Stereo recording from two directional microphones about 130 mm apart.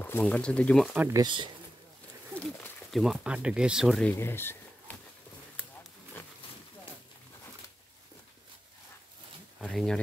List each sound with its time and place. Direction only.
0.2 s speech: 10° left (ahead or behind)
0.9 s speech: 20° right (ahead or behind)
1.2 s speech: 40° right (ahead or behind)
2.3 s speech: centre (ahead or behind)
4.1 s speech: 15° left (ahead or behind)
9.6 s speech: centre (ahead or behind)